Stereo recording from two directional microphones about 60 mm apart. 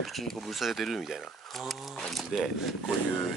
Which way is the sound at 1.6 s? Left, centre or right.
Centre.